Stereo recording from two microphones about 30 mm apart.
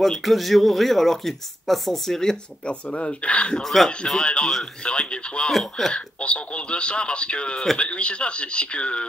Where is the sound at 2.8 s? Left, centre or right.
Left.